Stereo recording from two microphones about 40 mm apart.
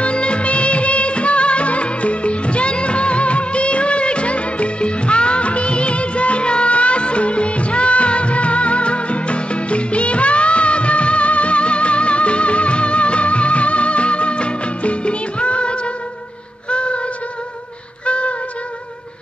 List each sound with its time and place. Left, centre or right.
0.0 s music of bollywood: left
16.7 s music: left
18.0 s music: left